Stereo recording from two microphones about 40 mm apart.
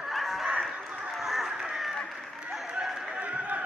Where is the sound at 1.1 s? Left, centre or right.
Centre.